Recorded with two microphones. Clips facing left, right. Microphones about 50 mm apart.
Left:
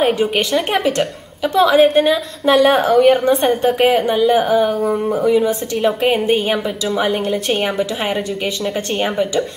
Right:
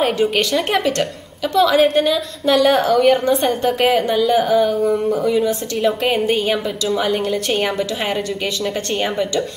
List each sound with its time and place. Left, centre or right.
0.0 s a woman's voice: centre